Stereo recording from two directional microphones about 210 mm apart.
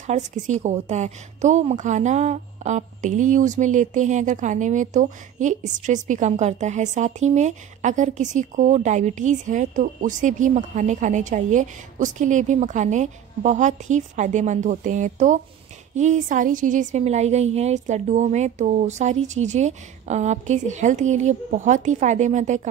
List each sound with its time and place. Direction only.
0.0 s a woman's voice: 35° right (ahead or behind)